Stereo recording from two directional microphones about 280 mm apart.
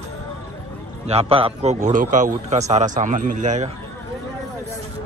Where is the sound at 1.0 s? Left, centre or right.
Right.